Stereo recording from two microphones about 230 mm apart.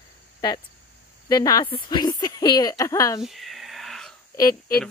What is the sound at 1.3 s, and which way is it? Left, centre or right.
Speech, centre.